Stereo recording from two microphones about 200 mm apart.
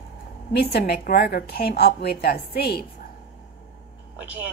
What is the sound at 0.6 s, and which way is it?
Speech, 50° left (ahead or behind).